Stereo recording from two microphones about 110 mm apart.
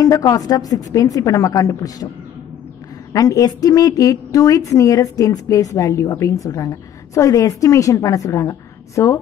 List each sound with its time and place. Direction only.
0.0 s a woman's voice: 30° left (ahead or behind)
3.1 s a woman's voice: 30° left (ahead or behind)